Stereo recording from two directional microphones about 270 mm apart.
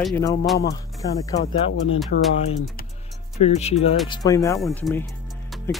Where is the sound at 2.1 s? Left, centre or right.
Left.